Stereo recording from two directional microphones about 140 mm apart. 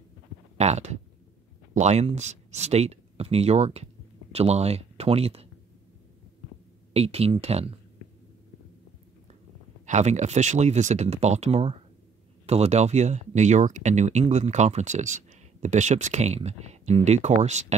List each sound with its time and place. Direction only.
0.6 s speech: 55° right (ahead or behind)
6.9 s speech: 45° right (ahead or behind)
9.8 s speech: 55° right (ahead or behind)